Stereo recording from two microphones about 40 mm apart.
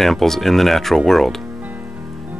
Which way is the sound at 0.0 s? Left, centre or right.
Centre.